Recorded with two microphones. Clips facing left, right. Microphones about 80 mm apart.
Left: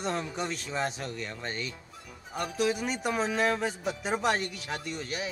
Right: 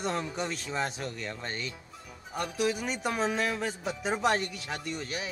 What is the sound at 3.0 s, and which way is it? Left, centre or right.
Speech, centre.